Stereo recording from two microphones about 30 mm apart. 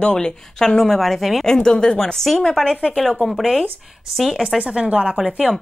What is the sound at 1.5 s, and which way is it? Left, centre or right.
Speech, left.